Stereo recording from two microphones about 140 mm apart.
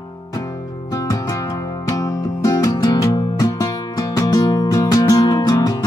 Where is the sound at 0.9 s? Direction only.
25° left (ahead or behind).